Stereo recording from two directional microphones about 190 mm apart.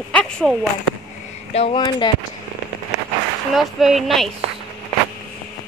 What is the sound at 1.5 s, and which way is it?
Speech, 30° left (ahead or behind).